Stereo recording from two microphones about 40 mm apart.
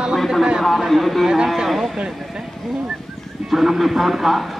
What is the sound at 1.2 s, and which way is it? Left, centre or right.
Speech, centre.